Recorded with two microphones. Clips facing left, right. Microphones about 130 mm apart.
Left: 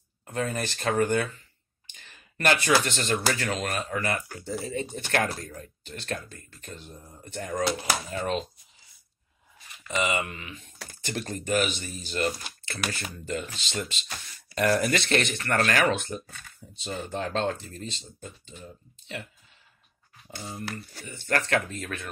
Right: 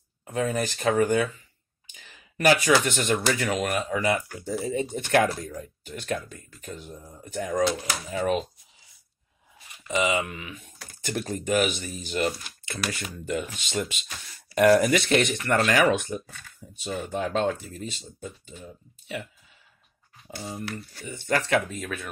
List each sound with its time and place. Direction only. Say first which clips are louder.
0.2 s speech: right 3 dB; 10° right (ahead or behind)
1.9 s a sound: right 2 dB; 10° right (ahead or behind)
2.8 s speech: right 2 dB; 15° right (ahead or behind)
9.8 s speech: right 3 dB; 5° right (ahead or behind)
13.3 s speech: right 4 dB; 10° right (ahead or behind)
20.7 s speech: right 3 dB; 15° right (ahead or behind)